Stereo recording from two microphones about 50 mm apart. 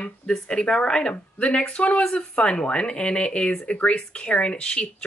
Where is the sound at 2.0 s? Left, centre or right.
Centre.